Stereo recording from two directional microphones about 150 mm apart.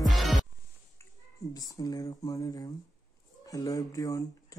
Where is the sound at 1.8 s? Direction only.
25° left (ahead or behind).